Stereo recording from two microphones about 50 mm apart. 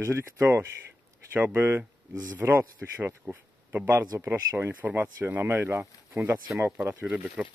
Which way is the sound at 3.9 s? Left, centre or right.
Right.